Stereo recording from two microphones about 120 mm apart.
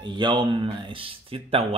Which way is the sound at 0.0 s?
40° right (ahead or behind).